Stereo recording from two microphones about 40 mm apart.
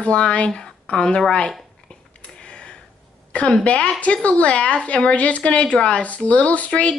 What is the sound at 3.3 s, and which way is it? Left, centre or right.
Speech, left.